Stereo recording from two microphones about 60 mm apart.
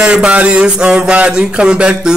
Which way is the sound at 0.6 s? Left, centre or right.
Centre.